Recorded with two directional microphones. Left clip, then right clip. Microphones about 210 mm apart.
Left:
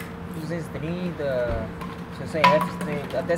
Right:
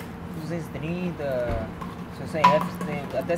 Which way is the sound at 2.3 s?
10° left (ahead or behind).